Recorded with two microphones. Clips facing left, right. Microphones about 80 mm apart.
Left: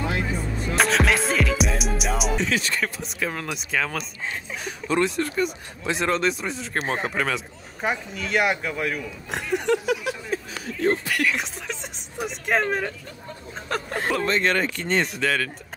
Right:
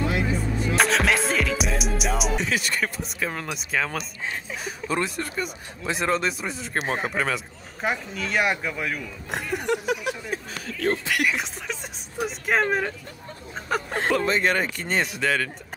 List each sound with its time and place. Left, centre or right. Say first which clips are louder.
0.7 s music: left 1 dB; centre
4.6 s speech: left 4 dB; centre
9.7 s a sound: left 2 dB; centre
11.3 s speech: even; centre
12.6 s speech: right 1 dB; centre